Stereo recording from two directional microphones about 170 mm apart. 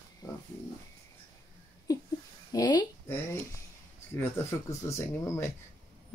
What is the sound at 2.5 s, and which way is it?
Speech, 25° left (ahead or behind).